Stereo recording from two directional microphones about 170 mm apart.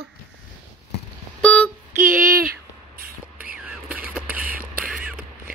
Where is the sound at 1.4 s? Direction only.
5° left (ahead or behind).